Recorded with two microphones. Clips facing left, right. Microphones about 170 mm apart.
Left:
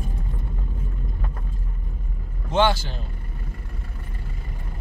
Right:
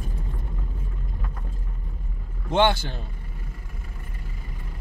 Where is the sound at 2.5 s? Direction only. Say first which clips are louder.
Even; 60° right (ahead or behind).